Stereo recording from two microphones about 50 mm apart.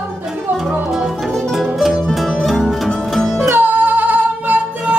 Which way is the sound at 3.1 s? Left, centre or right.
Centre.